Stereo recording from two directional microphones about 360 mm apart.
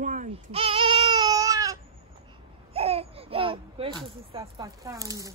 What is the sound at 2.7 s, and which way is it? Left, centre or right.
Babbling, centre.